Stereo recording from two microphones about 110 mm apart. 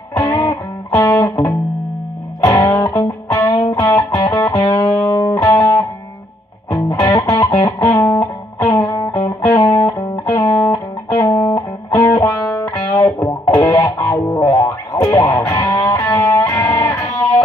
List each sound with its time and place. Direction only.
0.2 s music: 30° left (ahead or behind)